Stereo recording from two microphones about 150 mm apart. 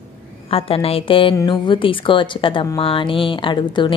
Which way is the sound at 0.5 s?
40° left (ahead or behind).